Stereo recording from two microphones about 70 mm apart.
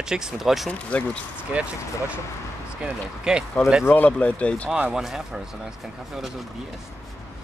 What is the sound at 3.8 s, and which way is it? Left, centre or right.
Speech, left.